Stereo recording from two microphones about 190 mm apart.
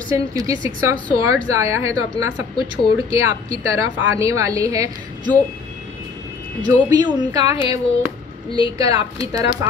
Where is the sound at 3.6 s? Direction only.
15° right (ahead or behind).